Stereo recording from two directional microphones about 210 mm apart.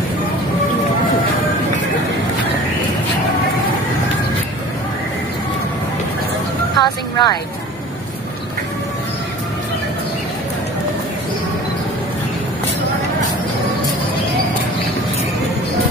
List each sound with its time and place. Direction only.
6.8 s vehicle: 20° left (ahead or behind)